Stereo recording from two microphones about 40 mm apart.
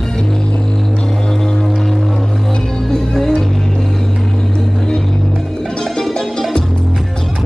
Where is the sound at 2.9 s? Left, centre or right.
Centre.